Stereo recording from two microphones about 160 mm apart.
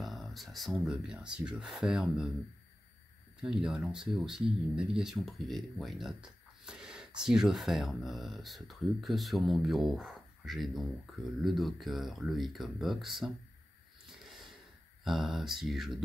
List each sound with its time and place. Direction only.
0.0 s speech: centre (ahead or behind)
3.4 s speech: centre (ahead or behind)
15.0 s speech: centre (ahead or behind)